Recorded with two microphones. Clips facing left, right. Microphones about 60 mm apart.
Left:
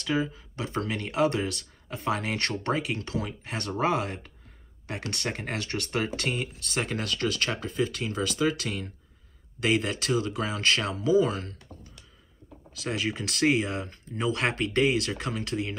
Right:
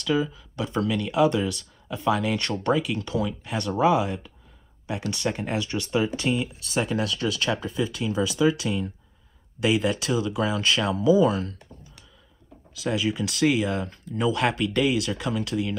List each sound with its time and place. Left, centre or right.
0.0 s speech: left